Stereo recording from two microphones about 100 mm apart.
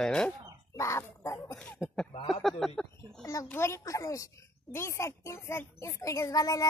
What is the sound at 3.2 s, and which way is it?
A child's voice, 35° left (ahead or behind).